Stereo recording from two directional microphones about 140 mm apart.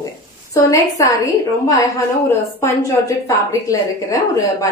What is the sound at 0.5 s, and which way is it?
Speech, 20° left (ahead or behind).